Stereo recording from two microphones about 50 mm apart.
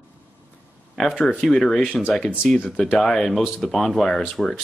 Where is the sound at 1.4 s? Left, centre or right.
Centre.